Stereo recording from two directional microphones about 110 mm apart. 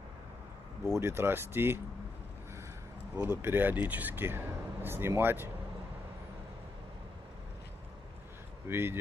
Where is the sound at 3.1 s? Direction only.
20° right (ahead or behind).